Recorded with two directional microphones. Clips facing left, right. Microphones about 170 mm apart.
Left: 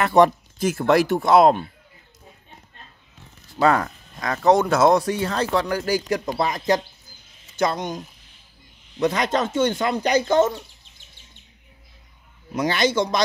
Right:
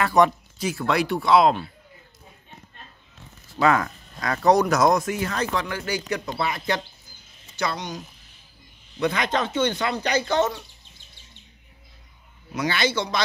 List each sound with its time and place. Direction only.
0.0 s speech: 30° left (ahead or behind)
0.6 s speech: 50° left (ahead or behind)
3.6 s speech: 35° left (ahead or behind); by 8.0 s 50° left (ahead or behind)
9.0 s speech: 40° left (ahead or behind)
12.5 s speech: 45° left (ahead or behind)